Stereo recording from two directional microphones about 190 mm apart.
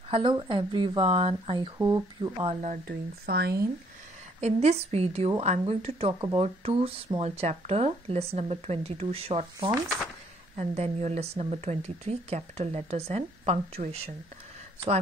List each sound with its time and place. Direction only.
0.1 s speech: 25° right (ahead or behind)
1.8 s speech: 20° right (ahead or behind)
2.4 s speech: 40° right (ahead or behind)
2.9 s speech: 60° right (ahead or behind)
4.4 s speech: 35° right (ahead or behind)